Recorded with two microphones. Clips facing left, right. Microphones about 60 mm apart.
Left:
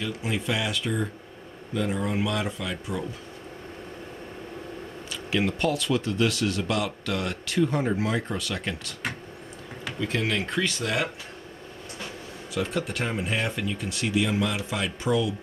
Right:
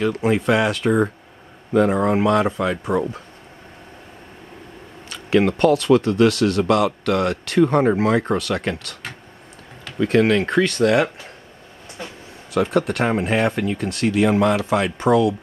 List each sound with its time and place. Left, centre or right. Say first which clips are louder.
0.0 s speech: right 11 dB; right
5.1 s speech: right 9 dB; right
9.9 s speech: right 11 dB; right
12.5 s speech: right 9 dB; right